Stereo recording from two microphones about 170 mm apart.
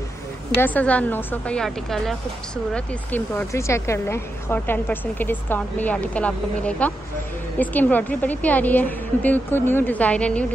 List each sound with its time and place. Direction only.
0.6 s a woman's voice: 10° left (ahead or behind)